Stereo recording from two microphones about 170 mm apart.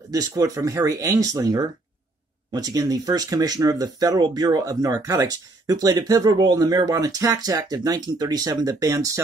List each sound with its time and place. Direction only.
0.1 s speech: 20° right (ahead or behind)